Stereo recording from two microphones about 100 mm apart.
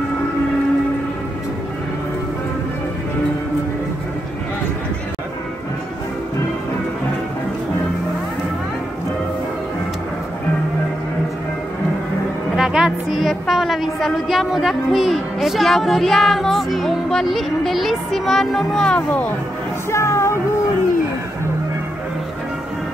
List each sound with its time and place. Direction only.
12.5 s a woman's voice: 5° right (ahead or behind)
19.9 s music: 30° left (ahead or behind)